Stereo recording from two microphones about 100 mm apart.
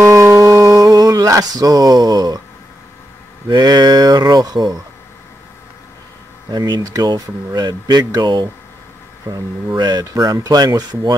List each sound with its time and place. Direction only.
0.0 s music: 25° right (ahead or behind)
3.4 s speech: 45° right (ahead or behind)
6.5 s speech: 45° right (ahead or behind)